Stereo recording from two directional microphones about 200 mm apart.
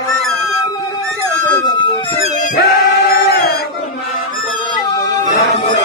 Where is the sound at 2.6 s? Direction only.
50° left (ahead or behind).